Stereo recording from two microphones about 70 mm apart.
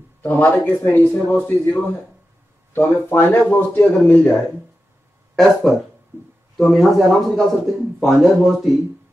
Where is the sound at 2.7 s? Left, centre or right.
Left.